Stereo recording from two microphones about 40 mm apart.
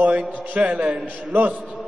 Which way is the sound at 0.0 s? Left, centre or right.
Right.